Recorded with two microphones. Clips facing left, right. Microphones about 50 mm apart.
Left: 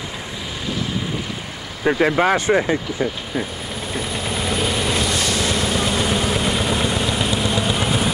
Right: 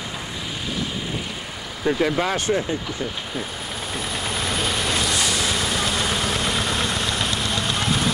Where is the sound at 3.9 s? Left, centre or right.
Centre.